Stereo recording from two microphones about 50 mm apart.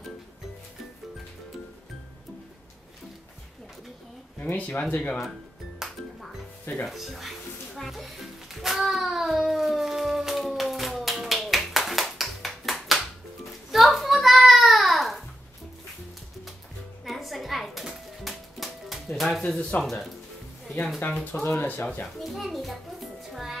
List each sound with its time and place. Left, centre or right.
4.6 s speech: left
5.8 s music: centre
13.7 s a sound: centre
17.0 s music: centre
19.8 s speech: centre
21.0 s speech: left
22.0 s music: centre